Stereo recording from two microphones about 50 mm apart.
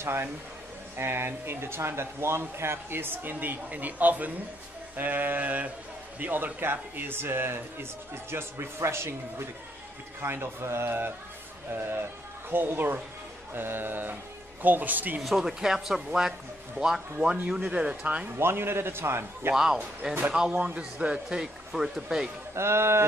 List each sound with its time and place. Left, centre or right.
0.0 s speech: right
15.2 s speech: centre
18.0 s speech: right
18.4 s speech: right
19.5 s speech: centre
20.5 s speech: right
22.5 s speech: right